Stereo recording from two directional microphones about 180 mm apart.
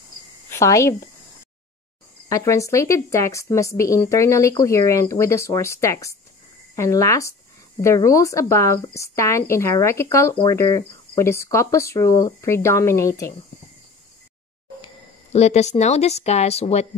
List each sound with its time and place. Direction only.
0.5 s a woman's voice: 15° left (ahead or behind)
2.2 s speech: 15° left (ahead or behind)
15.3 s speech: 40° left (ahead or behind)